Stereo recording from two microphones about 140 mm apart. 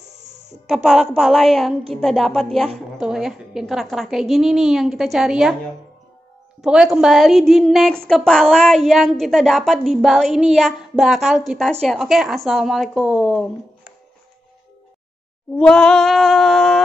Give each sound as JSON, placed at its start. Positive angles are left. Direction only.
{"t": 0.0, "sound": "music", "side_deg": -55}
{"t": 1.1, "sound": "a woman's voice", "side_deg": 0}
{"t": 6.6, "sound": "a woman's voice", "side_deg": -5}
{"t": 15.5, "sound": "a woman's voice", "side_deg": 5}